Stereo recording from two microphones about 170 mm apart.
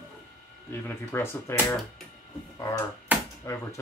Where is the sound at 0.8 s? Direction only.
15° left (ahead or behind).